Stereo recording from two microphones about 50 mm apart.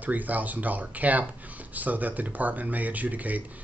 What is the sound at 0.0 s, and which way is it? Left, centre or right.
Speech, right.